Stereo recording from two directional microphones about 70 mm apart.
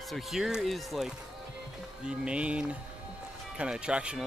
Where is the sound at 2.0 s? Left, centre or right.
Centre.